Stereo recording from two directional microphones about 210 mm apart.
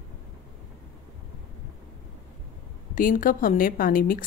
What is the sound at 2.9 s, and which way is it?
A woman's voice, 40° left (ahead or behind).